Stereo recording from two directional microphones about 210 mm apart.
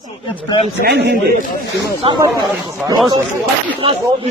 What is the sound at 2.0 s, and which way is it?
Speech, 25° right (ahead or behind).